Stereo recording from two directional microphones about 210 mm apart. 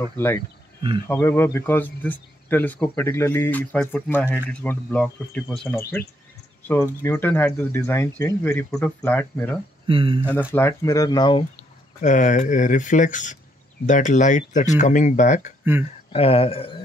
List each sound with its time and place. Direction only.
1.0 s speech: 10° left (ahead or behind)
9.8 s speech: 25° right (ahead or behind)
10.5 s speech: 15° left (ahead or behind)
12.0 s speech: 35° left (ahead or behind)